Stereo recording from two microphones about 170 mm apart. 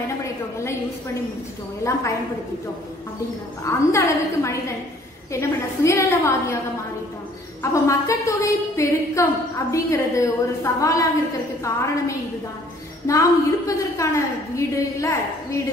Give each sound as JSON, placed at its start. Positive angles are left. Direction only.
{"t": 1.9, "sound": "a woman's voice", "side_deg": 15}
{"t": 3.6, "sound": "a woman's voice", "side_deg": 15}
{"t": 7.7, "sound": "a woman's voice", "side_deg": 20}
{"t": 13.0, "sound": "a woman's voice", "side_deg": 20}